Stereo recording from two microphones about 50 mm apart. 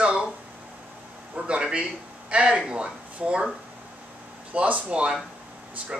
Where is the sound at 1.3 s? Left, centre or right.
Right.